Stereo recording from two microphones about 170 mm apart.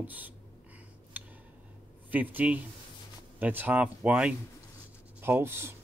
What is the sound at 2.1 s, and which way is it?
Speech, 10° right (ahead or behind).